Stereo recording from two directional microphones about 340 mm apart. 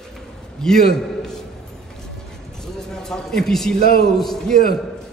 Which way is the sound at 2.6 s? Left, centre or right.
Centre.